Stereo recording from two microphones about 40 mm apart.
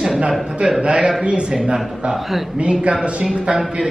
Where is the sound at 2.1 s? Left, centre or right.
Centre.